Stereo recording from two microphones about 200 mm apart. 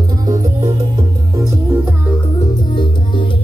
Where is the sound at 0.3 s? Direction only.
20° right (ahead or behind).